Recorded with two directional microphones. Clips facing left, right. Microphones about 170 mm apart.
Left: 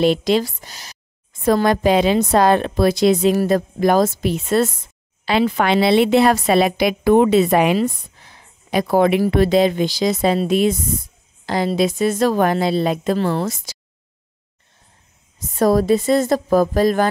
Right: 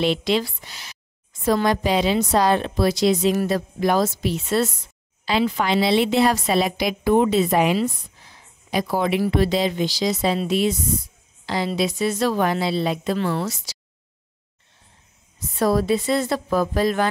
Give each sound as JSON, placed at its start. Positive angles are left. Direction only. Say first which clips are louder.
{"t": 0.0, "sound": "a woman's voice", "louder": "left 5 dB", "side_deg": 45}
{"t": 15.3, "sound": "speech", "louder": "left 4 dB", "side_deg": 45}